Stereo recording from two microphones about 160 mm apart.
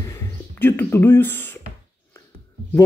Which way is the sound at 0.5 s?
10° left (ahead or behind).